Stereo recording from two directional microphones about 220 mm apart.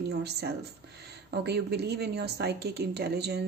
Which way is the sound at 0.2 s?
50° right (ahead or behind).